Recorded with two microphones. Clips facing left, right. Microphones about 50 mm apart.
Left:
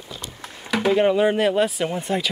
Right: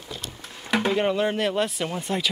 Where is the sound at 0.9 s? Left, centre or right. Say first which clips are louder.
Left 8 dB; centre.